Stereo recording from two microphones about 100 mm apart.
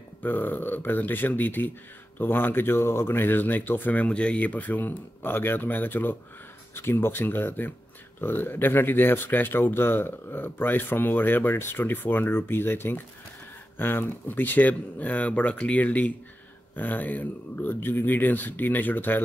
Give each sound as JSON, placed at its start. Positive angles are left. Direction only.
{"t": 0.2, "sound": "speech", "side_deg": 20}